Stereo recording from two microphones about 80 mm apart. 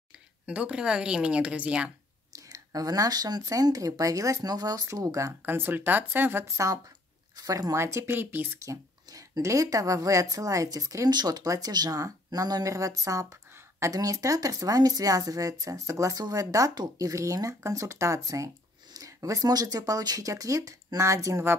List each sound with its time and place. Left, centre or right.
0.5 s speech: centre
2.3 s speech: right
4.8 s speech: right
5.4 s speech: right
6.4 s speech: right
8.1 s speech: right
8.6 s speech: right
11.4 s speech: right